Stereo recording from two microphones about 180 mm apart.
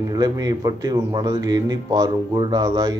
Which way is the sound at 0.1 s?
20° right (ahead or behind).